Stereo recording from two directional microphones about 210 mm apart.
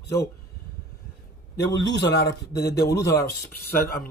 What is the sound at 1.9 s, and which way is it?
Speech, 50° left (ahead or behind).